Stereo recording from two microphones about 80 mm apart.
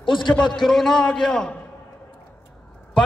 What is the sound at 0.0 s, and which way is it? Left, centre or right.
Speech, left.